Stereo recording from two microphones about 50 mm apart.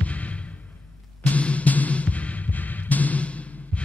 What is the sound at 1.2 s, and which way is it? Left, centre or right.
Music, left.